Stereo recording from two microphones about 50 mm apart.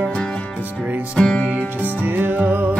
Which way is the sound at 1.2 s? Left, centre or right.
Centre.